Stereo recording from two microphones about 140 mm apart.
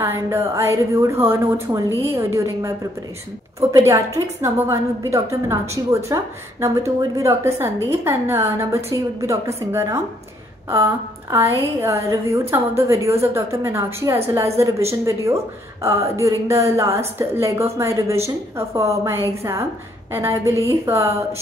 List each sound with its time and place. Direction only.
0.0 s a woman's voice: 20° right (ahead or behind)